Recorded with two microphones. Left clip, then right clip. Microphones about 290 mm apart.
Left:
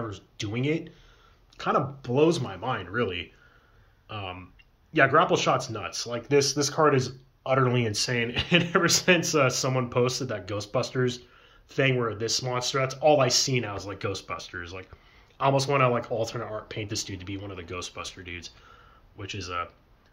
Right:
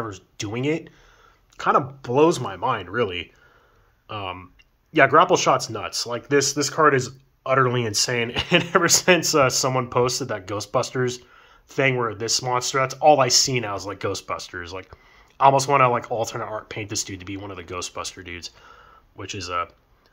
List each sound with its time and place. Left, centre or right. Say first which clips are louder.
0.0 s speech: right 4 dB; centre